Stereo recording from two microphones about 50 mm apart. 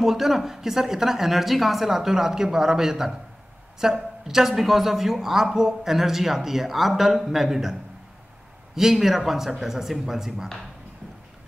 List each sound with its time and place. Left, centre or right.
0.0 s a woman's voice: centre
8.7 s a woman's voice: centre